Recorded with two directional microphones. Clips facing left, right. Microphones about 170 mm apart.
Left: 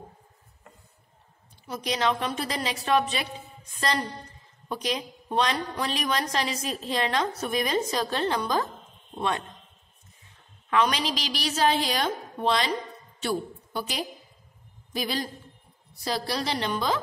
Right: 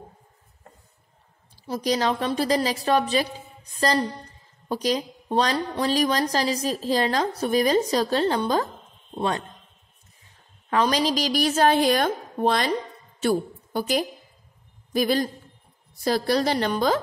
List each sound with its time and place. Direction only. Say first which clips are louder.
1.7 s a woman's voice: right 4 dB; 35° right (ahead or behind)
10.7 s a woman's voice: right 3 dB; 35° right (ahead or behind)